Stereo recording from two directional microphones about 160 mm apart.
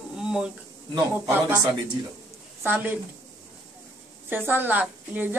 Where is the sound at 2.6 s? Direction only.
10° right (ahead or behind).